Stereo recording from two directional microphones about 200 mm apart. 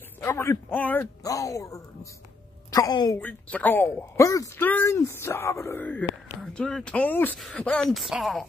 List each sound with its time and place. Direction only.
0.2 s a woman's voice: 15° left (ahead or behind)
3.2 s a woman's voice: 10° left (ahead or behind)